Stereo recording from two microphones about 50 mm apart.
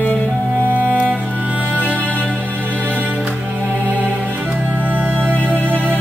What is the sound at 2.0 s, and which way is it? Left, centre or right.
Music, left.